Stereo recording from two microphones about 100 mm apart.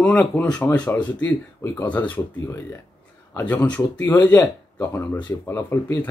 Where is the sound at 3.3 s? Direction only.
15° left (ahead or behind).